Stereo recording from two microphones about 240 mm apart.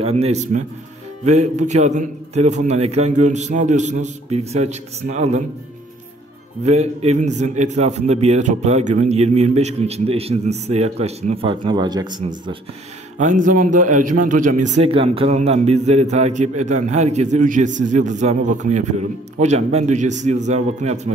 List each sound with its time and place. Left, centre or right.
0.0 s a man's voice: right
6.6 s a man's voice: right
13.2 s a man's voice: right